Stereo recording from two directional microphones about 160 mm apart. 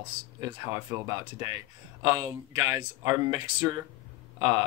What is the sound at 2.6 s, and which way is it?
Speech, 20° right (ahead or behind).